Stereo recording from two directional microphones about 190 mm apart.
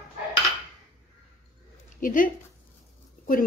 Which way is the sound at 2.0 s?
45° left (ahead or behind).